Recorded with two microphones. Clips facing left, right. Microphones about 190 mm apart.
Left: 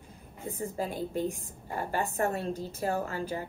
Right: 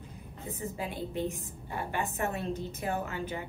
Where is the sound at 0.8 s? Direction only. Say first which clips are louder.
Left 3 dB; 35° left (ahead or behind).